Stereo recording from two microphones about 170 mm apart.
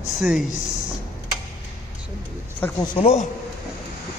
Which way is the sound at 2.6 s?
10° left (ahead or behind).